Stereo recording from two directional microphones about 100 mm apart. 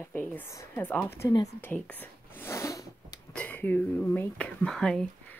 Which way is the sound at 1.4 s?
20° left (ahead or behind).